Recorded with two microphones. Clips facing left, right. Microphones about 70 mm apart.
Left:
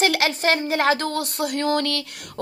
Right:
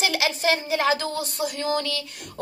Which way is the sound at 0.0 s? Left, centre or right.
Left.